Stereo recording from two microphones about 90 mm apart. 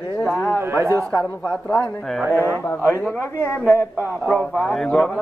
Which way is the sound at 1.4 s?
15° left (ahead or behind).